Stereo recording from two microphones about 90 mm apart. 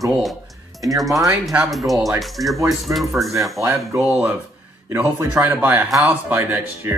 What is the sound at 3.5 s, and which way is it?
Speech, 35° right (ahead or behind).